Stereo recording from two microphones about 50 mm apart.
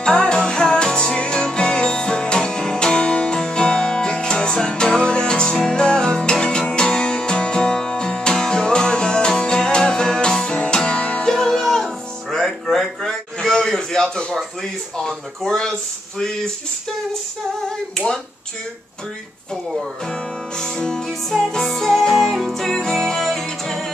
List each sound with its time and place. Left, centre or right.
0.0 s music: centre
11.2 s music: centre
17.6 s finger snapping: centre
19.8 s music: centre